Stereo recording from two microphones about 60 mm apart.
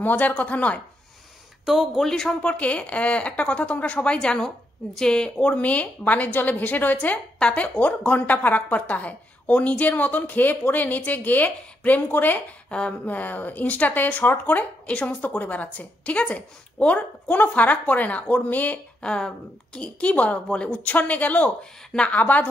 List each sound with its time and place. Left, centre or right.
0.0 s speech: left
1.7 s speech: centre
2.0 s a woman's voice: centre
2.4 s speech: left
12.6 s a woman's voice: centre
18.9 s a woman's voice: centre